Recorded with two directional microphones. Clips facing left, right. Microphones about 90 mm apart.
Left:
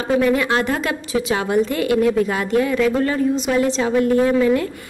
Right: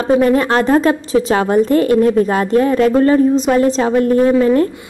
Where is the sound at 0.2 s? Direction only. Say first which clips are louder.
Right 5 dB; 40° right (ahead or behind).